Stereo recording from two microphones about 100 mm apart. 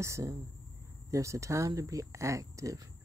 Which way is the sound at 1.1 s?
30° right (ahead or behind).